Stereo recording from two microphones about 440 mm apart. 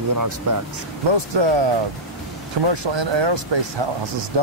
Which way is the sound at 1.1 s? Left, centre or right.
Right.